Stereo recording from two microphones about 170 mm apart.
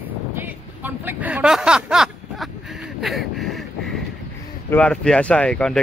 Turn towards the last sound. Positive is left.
turn(degrees=5)  # may be behind; listen again after turning